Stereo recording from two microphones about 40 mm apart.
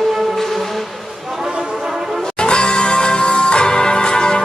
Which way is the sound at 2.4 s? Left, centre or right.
Left.